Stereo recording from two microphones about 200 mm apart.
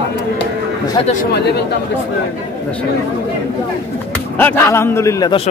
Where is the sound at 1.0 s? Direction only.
25° left (ahead or behind).